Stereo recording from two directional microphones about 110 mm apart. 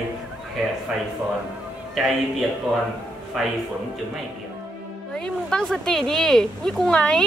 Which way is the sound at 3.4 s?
Centre (ahead or behind).